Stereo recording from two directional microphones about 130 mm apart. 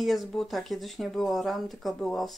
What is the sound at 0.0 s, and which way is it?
Speech, centre (ahead or behind).